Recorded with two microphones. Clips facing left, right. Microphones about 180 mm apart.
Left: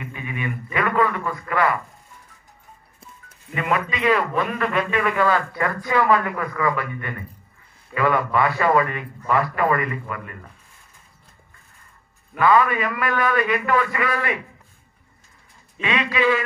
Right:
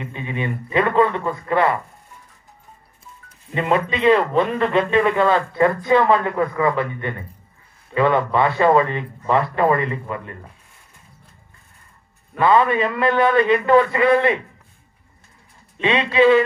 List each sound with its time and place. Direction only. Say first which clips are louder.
0.0 s a man's voice: right 3 dB; 25° right (ahead or behind)
3.5 s a man's voice: right 4 dB; 25° right (ahead or behind)
12.4 s a man's voice: right 2 dB; 25° right (ahead or behind)
15.8 s a man's voice: right 6 dB; 25° right (ahead or behind)